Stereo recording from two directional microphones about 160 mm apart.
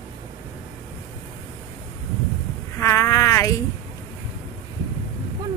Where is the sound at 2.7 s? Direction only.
20° left (ahead or behind).